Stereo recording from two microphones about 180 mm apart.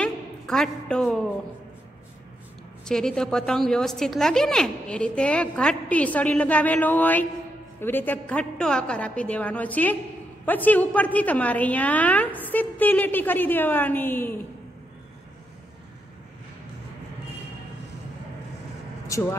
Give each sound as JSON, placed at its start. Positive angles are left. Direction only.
{"t": 0.0, "sound": "a woman's voice", "side_deg": 5}
{"t": 2.8, "sound": "a woman's voice", "side_deg": 5}
{"t": 19.0, "sound": "a sound", "side_deg": 15}